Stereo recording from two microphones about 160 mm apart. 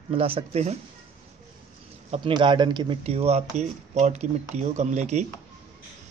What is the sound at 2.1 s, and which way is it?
Speech, 30° right (ahead or behind).